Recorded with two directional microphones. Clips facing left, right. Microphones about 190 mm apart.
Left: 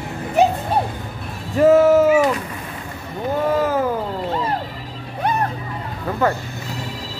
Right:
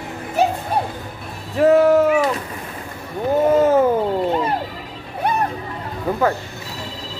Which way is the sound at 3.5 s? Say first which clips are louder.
Right 6 dB; 25° right (ahead or behind).